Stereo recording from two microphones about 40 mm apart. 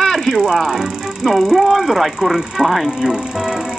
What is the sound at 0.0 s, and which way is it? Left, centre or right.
Music, centre.